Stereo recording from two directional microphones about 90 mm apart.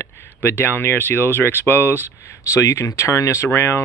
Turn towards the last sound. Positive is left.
turn(degrees=25)  # may be behind; listen again after turning